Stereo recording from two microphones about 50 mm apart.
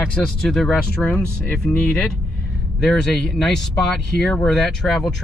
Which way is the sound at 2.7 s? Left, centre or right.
Centre.